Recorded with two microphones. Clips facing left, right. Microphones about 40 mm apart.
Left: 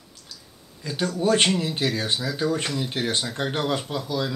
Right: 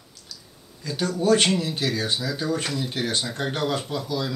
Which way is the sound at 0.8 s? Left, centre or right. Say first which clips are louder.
Right 1 dB; left.